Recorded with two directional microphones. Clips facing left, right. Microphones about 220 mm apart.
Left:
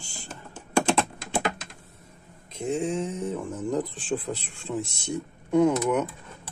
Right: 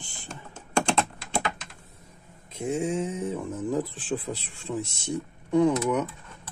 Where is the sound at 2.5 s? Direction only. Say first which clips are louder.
Even; 10° right (ahead or behind); by 6.5 s 5° left (ahead or behind).